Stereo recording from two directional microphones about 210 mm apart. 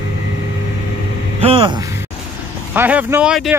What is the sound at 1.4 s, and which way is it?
Speech, 25° right (ahead or behind).